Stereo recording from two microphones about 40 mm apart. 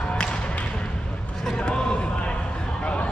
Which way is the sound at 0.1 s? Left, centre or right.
Left.